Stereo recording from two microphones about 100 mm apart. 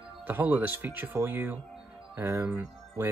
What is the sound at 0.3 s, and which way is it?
Speech, 15° right (ahead or behind).